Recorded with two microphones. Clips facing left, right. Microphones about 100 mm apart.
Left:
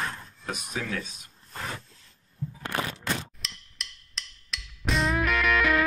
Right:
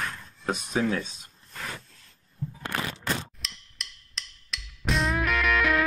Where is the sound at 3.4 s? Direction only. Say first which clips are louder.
Even; centre (ahead or behind).